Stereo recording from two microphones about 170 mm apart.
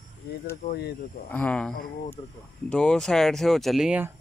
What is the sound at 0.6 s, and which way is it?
Speech, 70° left (ahead or behind).